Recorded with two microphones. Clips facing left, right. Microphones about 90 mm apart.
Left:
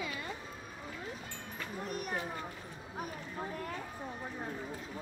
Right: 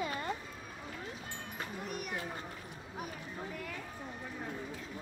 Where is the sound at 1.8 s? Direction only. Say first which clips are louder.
Left 4 dB; 40° left (ahead or behind).